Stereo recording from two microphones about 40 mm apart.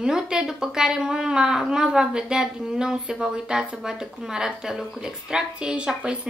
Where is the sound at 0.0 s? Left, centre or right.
Centre.